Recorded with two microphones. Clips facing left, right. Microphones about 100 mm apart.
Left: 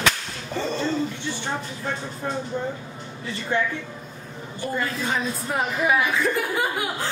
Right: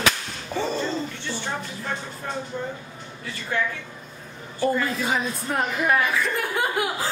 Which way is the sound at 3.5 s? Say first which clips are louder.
Left 2 dB; 25° left (ahead or behind).